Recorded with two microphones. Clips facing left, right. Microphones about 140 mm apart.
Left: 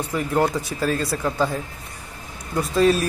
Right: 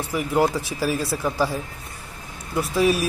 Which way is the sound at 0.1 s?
10° right (ahead or behind).